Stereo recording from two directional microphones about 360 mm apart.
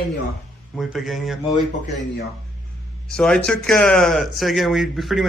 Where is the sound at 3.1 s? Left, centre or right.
Centre.